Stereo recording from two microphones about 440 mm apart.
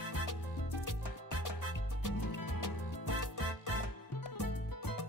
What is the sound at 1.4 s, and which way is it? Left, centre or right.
Music, left.